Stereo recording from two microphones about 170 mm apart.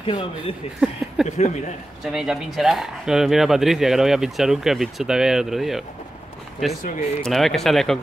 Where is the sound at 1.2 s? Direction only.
40° left (ahead or behind).